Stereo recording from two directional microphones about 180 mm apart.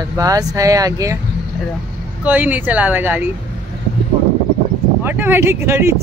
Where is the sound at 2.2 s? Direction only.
10° right (ahead or behind).